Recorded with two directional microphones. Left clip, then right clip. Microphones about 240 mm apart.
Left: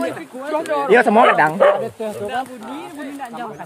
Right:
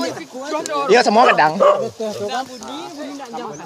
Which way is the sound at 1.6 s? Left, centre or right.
Right.